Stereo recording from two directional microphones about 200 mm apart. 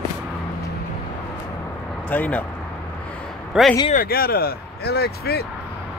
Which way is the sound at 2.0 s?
10° left (ahead or behind).